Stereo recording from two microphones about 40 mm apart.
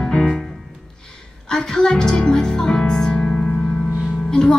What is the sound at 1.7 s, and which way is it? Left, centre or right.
Music, centre.